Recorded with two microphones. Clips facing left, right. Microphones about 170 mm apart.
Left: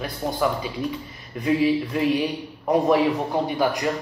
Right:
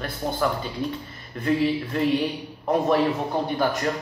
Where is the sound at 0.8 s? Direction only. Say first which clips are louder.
Even; 30° right (ahead or behind).